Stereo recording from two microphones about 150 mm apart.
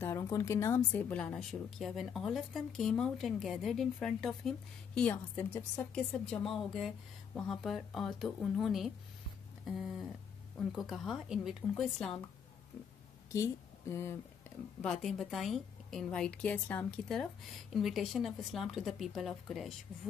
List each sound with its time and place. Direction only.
0.0 s a woman's voice: 20° left (ahead or behind); by 12.1 s 5° left (ahead or behind)
13.3 s speech: 20° left (ahead or behind)
14.8 s a woman's voice: 5° left (ahead or behind)